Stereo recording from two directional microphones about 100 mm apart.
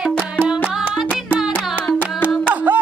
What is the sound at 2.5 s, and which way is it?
Music, 15° right (ahead or behind).